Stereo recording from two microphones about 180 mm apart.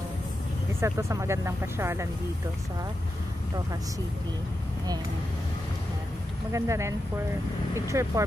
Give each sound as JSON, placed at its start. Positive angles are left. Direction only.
{"t": 0.7, "sound": "speech", "side_deg": -15}
{"t": 6.5, "sound": "speech", "side_deg": -15}